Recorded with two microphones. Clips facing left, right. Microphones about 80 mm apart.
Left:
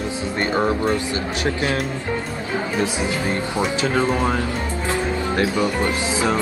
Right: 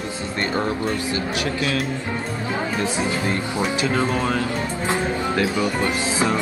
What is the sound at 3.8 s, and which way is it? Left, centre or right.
Speech, left.